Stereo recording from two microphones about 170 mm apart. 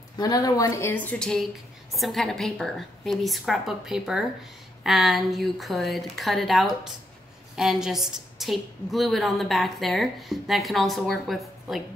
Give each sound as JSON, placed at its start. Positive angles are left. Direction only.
{"t": 0.2, "sound": "a woman's voice", "side_deg": 20}